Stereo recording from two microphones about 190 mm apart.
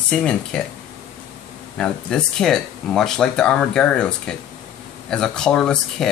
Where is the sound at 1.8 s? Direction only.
5° left (ahead or behind).